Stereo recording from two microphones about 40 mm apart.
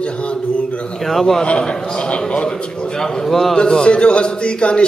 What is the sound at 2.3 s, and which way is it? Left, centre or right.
A man's voice, left.